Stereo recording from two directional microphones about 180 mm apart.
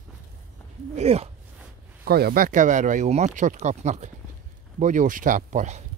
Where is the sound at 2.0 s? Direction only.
60° right (ahead or behind).